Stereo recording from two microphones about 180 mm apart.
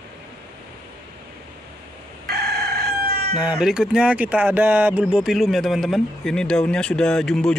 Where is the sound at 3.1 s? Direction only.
60° right (ahead or behind).